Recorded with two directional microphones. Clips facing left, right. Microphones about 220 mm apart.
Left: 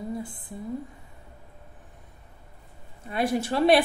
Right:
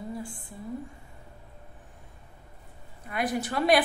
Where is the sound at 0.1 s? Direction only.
20° left (ahead or behind).